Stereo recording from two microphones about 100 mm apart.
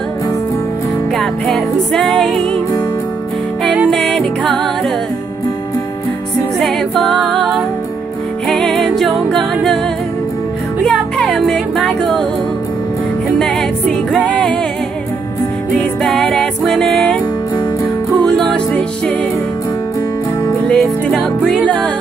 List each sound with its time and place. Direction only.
1.1 s music: 5° left (ahead or behind)
3.9 s music: 5° left (ahead or behind)
7.2 s music: centre (ahead or behind)
10.8 s music: 5° left (ahead or behind)
13.4 s music: 5° left (ahead or behind)
16.0 s music: 5° left (ahead or behind)
18.1 s music: 15° left (ahead or behind)
20.6 s music: 10° left (ahead or behind)